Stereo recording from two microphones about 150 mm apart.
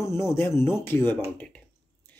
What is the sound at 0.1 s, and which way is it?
Speech, 15° left (ahead or behind).